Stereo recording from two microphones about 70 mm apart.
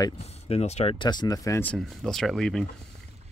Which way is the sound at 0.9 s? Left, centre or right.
Left.